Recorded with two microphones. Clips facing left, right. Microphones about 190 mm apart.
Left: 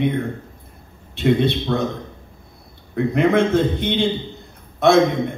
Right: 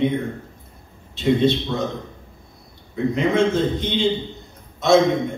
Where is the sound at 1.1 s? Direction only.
60° left (ahead or behind).